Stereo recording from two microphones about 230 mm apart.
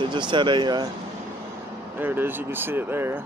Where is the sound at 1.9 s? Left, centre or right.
Centre.